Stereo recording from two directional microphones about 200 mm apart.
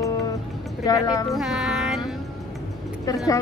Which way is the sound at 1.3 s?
Centre (ahead or behind).